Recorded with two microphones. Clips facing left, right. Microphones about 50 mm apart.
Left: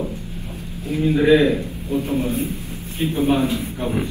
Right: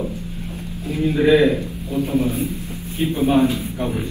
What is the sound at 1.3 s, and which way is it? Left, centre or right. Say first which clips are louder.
Speech: even; right.